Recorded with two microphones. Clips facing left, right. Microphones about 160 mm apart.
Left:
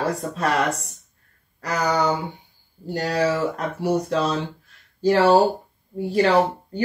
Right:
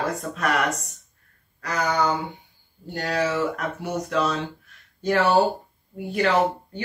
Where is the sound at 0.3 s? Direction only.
30° left (ahead or behind).